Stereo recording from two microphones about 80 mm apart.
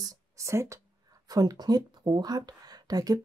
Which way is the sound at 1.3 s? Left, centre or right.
Right.